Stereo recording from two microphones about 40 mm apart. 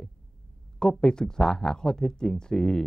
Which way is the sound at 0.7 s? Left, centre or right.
Centre.